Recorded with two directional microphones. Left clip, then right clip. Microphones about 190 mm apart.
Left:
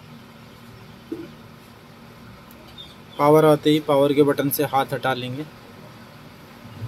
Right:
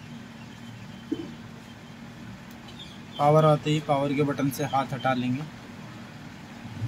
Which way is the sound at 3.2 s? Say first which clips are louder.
Left 5 dB; 55° left (ahead or behind).